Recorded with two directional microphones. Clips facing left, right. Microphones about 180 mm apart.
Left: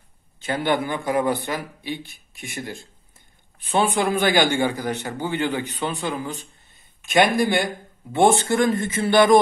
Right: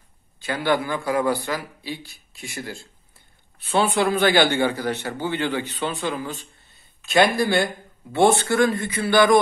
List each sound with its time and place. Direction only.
0.4 s a man's voice: 20° left (ahead or behind)